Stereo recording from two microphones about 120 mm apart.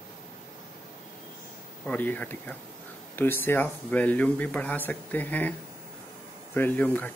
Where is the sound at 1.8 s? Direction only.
15° left (ahead or behind).